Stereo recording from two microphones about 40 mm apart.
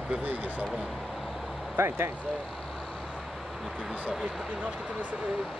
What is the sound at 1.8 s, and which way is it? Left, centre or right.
Speech, right.